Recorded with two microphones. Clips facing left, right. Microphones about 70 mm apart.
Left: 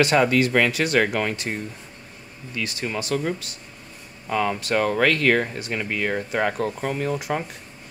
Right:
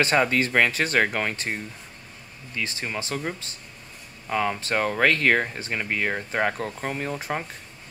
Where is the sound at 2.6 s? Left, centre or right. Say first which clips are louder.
Left 2 dB; right.